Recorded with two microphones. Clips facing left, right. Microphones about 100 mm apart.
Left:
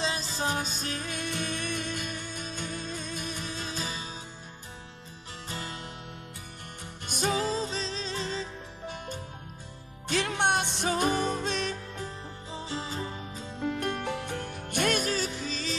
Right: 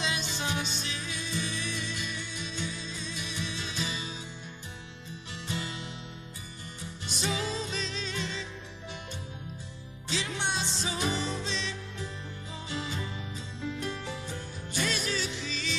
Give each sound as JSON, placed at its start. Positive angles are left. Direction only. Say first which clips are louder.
{"t": 0.0, "sound": "music", "louder": "left 3 dB", "side_deg": 35}
{"t": 5.5, "sound": "music", "louder": "right 2 dB", "side_deg": 45}
{"t": 10.0, "sound": "music", "louder": "left 6 dB", "side_deg": 55}
{"t": 12.6, "sound": "music", "louder": "left 1 dB", "side_deg": 35}
{"t": 13.6, "sound": "music", "louder": "left 5 dB", "side_deg": 55}